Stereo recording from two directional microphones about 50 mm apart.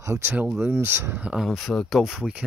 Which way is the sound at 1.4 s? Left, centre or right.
Centre.